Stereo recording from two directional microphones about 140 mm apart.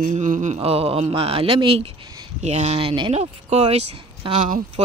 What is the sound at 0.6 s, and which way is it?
Speech, 45° right (ahead or behind).